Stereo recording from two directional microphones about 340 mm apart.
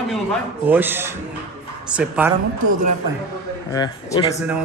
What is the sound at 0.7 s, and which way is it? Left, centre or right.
Speech, centre.